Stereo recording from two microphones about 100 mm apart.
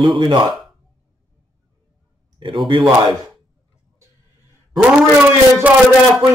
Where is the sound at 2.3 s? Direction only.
55° right (ahead or behind).